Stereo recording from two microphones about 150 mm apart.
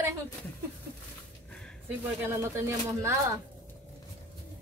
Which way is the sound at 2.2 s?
15° right (ahead or behind).